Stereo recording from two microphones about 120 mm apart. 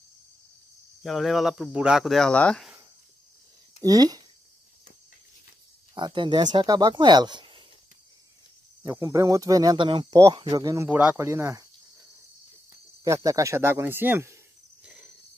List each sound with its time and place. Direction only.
1.0 s speech: centre (ahead or behind)
3.8 s speech: 30° right (ahead or behind)
5.9 s speech: 40° right (ahead or behind)
8.8 s speech: 25° right (ahead or behind)
10.9 s speech: 10° right (ahead or behind)
11.1 s speech: 20° right (ahead or behind)
13.0 s speech: 25° right (ahead or behind)